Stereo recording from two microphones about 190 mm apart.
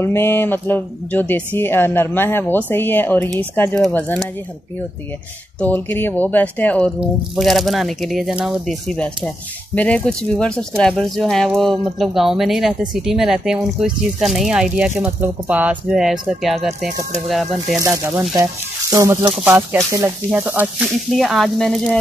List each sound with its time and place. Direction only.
0.0 s speech: 10° left (ahead or behind)
5.6 s speech: 10° left (ahead or behind)
18.3 s speech: 20° right (ahead or behind); by 21.9 s centre (ahead or behind)